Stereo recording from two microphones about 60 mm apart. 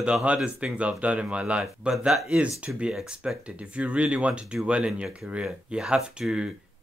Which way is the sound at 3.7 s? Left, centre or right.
Right.